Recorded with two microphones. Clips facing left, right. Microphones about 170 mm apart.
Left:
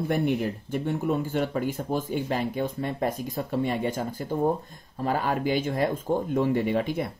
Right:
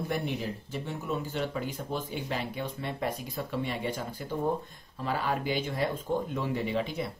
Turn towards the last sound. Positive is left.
turn(degrees=50)  # may be behind; listen again after turning